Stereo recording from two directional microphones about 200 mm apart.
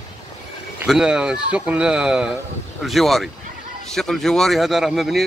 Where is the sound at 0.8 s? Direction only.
5° right (ahead or behind).